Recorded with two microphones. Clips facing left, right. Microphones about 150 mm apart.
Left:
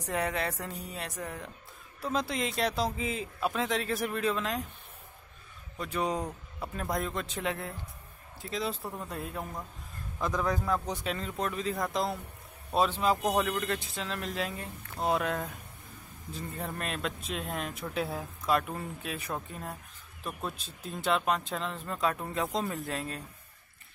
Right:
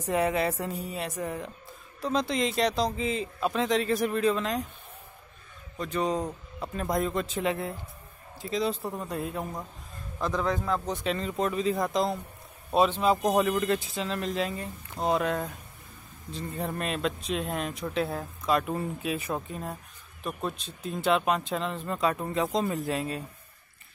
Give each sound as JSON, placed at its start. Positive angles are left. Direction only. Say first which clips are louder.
{"t": 0.0, "sound": "speech", "louder": "right 6 dB", "side_deg": -5}
{"t": 5.8, "sound": "speech", "louder": "right 3 dB", "side_deg": 5}
{"t": 8.8, "sound": "a man's voice", "louder": "right 5 dB", "side_deg": -20}
{"t": 9.1, "sound": "speech", "louder": "right 5 dB", "side_deg": 0}